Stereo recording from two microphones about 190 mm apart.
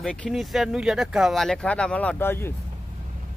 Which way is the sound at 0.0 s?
5° left (ahead or behind).